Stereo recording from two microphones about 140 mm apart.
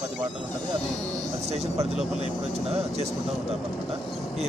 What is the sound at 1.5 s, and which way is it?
Speech, 50° right (ahead or behind).